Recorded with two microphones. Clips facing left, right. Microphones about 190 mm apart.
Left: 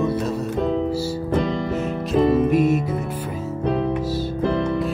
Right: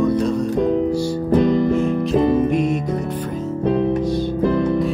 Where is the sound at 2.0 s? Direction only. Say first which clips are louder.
Right 1 dB; 5° left (ahead or behind).